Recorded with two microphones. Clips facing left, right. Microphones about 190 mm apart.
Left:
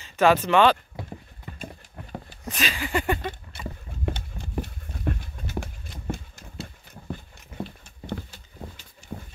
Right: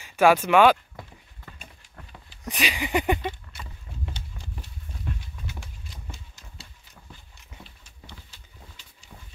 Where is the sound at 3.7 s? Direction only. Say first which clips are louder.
Left 10 dB; 55° left (ahead or behind).